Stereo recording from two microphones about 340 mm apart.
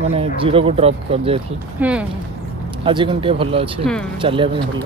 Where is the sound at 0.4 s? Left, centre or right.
Centre.